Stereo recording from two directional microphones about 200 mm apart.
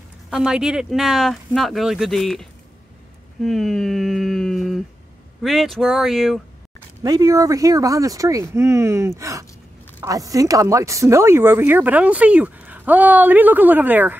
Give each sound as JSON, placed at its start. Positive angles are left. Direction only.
{"t": 0.3, "sound": "speech", "side_deg": -5}
{"t": 3.4, "sound": "a sound", "side_deg": 0}
{"t": 5.4, "sound": "speech", "side_deg": 0}
{"t": 7.0, "sound": "speech", "side_deg": -20}